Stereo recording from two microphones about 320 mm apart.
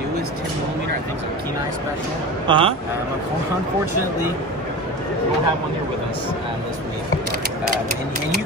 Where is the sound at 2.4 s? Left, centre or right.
Centre.